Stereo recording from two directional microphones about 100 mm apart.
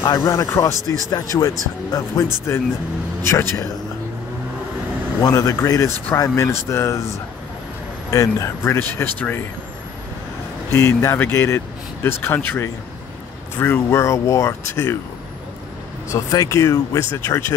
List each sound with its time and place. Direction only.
0.0 s speech: 35° left (ahead or behind)
5.2 s speech: 35° left (ahead or behind)
8.1 s speech: 30° left (ahead or behind)
10.7 s speech: 25° left (ahead or behind)
16.1 s speech: 35° left (ahead or behind)